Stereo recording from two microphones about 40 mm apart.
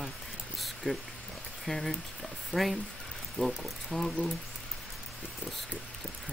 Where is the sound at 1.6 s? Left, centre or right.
Centre.